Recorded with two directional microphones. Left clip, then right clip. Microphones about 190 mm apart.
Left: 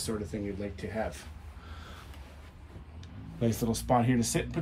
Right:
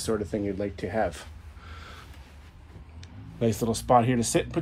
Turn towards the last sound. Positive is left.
turn(degrees=5)  # may be behind; listen again after turning